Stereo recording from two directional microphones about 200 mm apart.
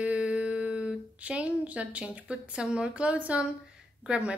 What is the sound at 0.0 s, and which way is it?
A woman's voice, 5° right (ahead or behind).